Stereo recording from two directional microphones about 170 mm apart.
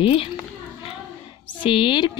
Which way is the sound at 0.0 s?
35° left (ahead or behind).